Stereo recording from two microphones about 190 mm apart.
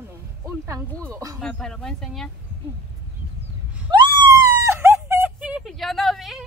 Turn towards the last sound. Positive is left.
turn(degrees=0)  # may be behind; listen again after turning